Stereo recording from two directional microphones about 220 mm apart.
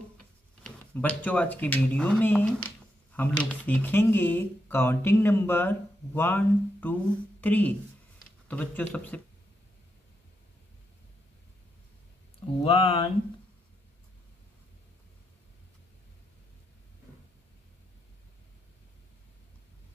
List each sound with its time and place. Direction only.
0.7 s speech: 5° left (ahead or behind)
12.6 s speech: 25° left (ahead or behind)